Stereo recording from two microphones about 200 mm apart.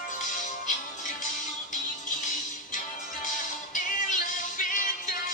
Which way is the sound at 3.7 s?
40° left (ahead or behind).